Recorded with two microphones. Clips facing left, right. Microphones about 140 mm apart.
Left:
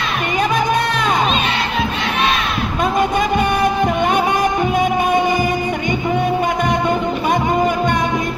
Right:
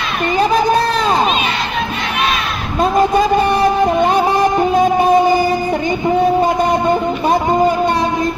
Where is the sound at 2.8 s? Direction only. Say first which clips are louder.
Right 5 dB; 35° right (ahead or behind).